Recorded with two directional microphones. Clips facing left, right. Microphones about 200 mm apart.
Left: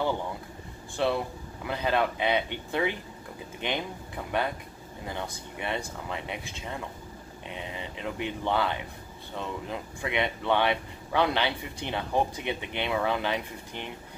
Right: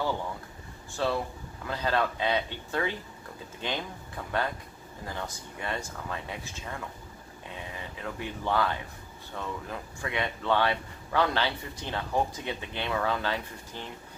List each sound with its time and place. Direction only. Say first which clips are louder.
0.9 s speech: left 2 dB; 15° left (ahead or behind)
4.2 s speech: left 1 dB; 15° left (ahead or behind)